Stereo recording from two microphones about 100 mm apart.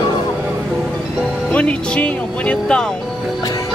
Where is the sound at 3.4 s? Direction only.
35° left (ahead or behind).